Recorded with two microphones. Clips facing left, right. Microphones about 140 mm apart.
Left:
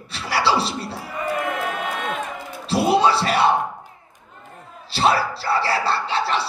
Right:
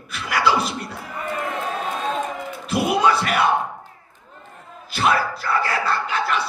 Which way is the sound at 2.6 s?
30° left (ahead or behind).